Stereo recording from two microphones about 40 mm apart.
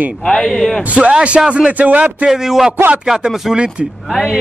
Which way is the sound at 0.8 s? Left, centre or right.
Right.